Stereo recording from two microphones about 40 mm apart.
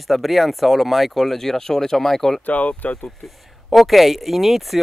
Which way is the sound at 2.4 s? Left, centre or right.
Left.